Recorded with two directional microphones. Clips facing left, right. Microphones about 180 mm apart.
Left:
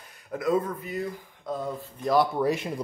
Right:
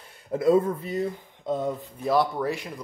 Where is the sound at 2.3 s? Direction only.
15° left (ahead or behind).